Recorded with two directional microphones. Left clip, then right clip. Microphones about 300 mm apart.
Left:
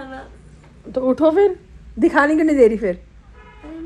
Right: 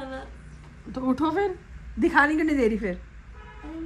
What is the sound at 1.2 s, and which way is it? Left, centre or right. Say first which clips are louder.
Speech: left 11 dB; left.